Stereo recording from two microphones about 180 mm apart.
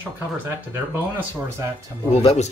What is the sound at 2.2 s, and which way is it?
Speech, 35° left (ahead or behind).